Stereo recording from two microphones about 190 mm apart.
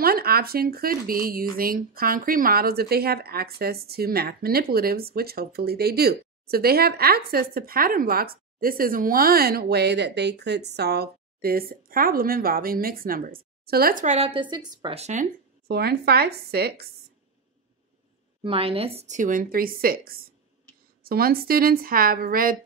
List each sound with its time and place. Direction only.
0.0 s speech: 55° right (ahead or behind); by 15.2 s 35° right (ahead or behind)
15.7 s speech: 55° right (ahead or behind)
18.4 s a woman's voice: 30° right (ahead or behind); by 22.6 s 50° right (ahead or behind)